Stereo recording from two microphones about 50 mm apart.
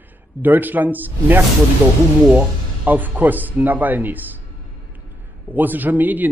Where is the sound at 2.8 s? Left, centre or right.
Right.